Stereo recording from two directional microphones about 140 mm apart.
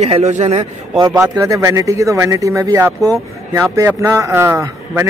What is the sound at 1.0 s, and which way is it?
Speech, 25° right (ahead or behind).